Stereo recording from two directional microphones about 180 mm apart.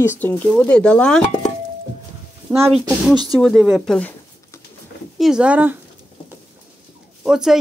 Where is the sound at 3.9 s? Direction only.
10° left (ahead or behind).